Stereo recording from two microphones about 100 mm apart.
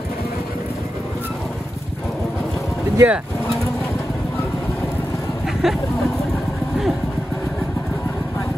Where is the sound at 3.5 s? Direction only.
30° left (ahead or behind).